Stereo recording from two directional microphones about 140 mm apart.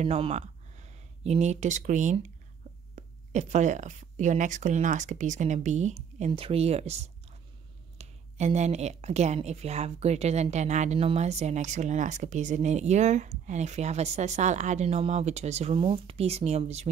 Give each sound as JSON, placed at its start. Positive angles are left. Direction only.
{"t": 0.0, "sound": "a woman's voice", "side_deg": -50}